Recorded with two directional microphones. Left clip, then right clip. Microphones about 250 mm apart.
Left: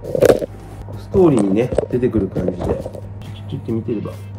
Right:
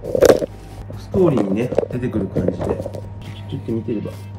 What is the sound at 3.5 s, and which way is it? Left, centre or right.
Speech, centre.